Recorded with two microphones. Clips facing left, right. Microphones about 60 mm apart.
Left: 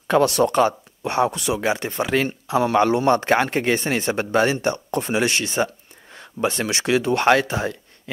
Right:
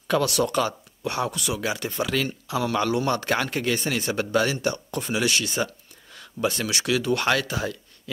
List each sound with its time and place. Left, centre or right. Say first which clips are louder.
0.1 s speech: left 5 dB; left